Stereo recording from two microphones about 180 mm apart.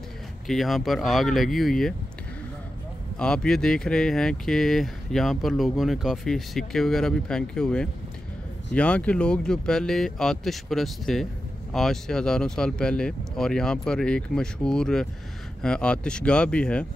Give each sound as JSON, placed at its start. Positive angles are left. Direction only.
{"t": 0.5, "sound": "speech", "side_deg": 0}
{"t": 3.2, "sound": "speech", "side_deg": 5}